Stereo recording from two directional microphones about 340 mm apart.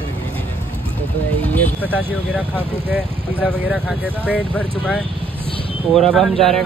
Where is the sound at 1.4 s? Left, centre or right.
Centre.